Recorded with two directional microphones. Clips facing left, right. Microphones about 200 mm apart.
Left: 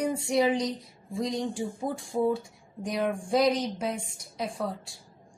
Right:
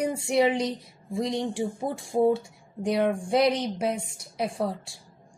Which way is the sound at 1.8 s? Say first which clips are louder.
Right 4 dB; 30° right (ahead or behind).